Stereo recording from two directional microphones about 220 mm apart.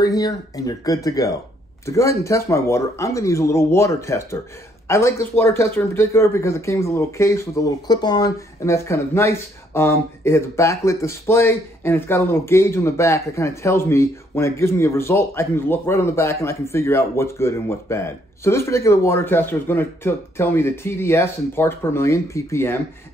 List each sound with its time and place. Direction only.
0.0 s speech: 15° left (ahead or behind)